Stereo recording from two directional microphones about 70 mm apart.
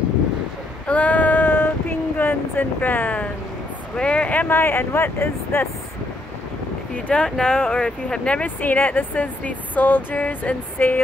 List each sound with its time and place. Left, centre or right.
0.8 s child singing: left
3.9 s speech: centre; by 5.7 s left
7.1 s speech: centre